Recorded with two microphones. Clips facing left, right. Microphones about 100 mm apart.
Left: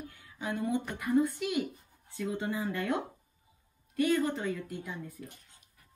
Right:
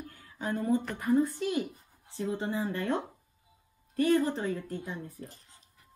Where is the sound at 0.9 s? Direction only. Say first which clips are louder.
Right 1 dB; 35° right (ahead or behind).